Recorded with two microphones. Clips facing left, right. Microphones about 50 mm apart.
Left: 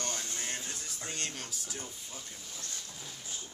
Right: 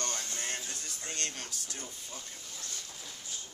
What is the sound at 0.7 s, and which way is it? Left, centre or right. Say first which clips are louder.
Music: even; centre.